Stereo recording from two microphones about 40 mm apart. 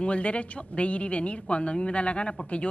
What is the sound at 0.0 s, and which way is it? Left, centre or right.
A woman's voice, left.